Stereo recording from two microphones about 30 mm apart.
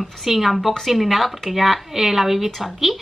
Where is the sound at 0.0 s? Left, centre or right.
Centre.